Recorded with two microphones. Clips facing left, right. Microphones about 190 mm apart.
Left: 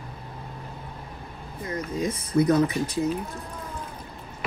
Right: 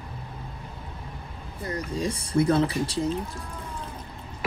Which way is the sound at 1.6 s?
35° right (ahead or behind).